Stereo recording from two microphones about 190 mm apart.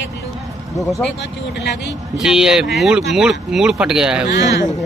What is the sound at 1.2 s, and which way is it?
Speech, 65° left (ahead or behind).